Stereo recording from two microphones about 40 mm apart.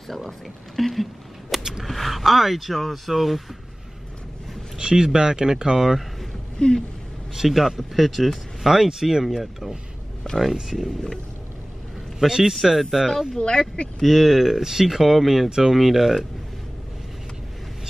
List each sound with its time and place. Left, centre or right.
0.1 s speech: centre
1.6 s a sound: centre
1.9 s speech: centre
4.7 s speech: centre
6.6 s speech: centre
7.3 s speech: centre
12.2 s speech: centre
13.4 s speech: left
14.0 s speech: centre